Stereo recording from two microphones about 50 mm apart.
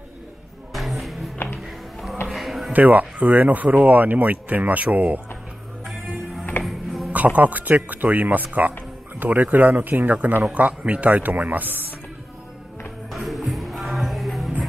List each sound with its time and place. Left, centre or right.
0.7 s music: centre
2.2 s a sound: centre
2.7 s speech: right
6.6 s music: centre
7.1 s speech: right
13.1 s music: centre